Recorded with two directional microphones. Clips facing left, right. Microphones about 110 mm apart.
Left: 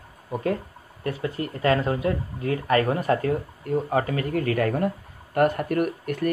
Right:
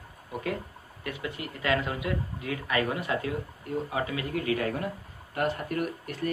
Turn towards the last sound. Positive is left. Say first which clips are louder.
# left 7 dB
turn(degrees=55)  # may be behind; listen again after turning